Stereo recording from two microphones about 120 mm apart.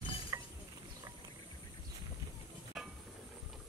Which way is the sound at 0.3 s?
25° right (ahead or behind).